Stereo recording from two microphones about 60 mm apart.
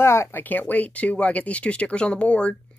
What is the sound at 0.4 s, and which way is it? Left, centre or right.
Speech, left.